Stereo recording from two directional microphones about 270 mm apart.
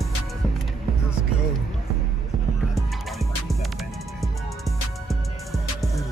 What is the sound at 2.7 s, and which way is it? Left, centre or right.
Music, centre.